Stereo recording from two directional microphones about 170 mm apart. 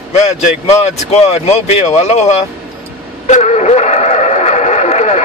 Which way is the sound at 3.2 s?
45° left (ahead or behind).